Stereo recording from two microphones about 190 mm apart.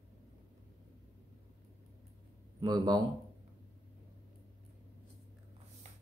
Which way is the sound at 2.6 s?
20° right (ahead or behind).